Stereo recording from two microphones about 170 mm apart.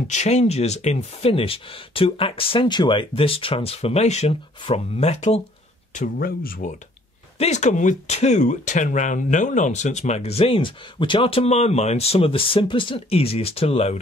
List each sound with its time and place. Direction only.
0.0 s speech: 45° left (ahead or behind)
6.1 s speech: 60° left (ahead or behind)
7.3 s speech: 40° left (ahead or behind)